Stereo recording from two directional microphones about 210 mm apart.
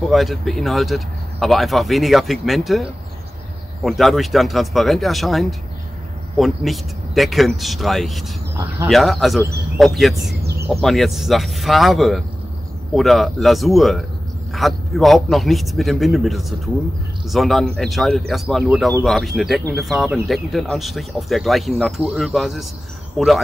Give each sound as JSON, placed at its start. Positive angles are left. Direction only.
{"t": 0.1, "sound": "speech", "side_deg": 0}
{"t": 10.4, "sound": "insect", "side_deg": -50}
{"t": 10.7, "sound": "speech", "side_deg": 0}